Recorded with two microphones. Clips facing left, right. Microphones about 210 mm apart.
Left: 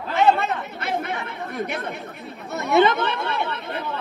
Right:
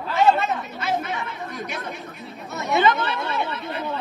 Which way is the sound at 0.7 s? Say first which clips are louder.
Right 1 dB; 60° left (ahead or behind).